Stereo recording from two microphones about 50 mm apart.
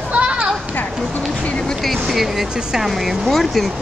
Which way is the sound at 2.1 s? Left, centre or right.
Centre.